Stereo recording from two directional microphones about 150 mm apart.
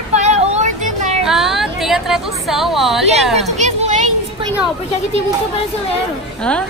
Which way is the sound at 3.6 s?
50° right (ahead or behind).